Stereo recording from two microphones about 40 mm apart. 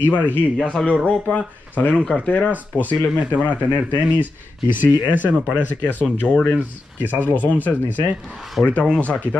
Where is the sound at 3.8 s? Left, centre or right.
Right.